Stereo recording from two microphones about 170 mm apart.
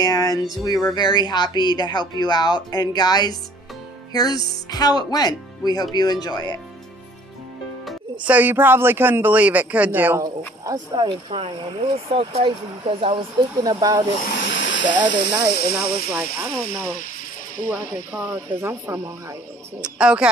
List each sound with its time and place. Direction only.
0.0 s speech: 20° left (ahead or behind)
7.8 s speech: 10° right (ahead or behind)
10.6 s speech: 25° right (ahead or behind)
14.2 s hiss: 80° left
15.0 s speech: 90° left
16.1 s speech: 5° right (ahead or behind)
19.8 s speech: 5° right (ahead or behind)